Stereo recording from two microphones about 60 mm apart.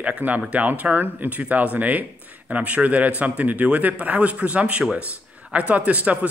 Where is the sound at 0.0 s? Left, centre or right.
Right.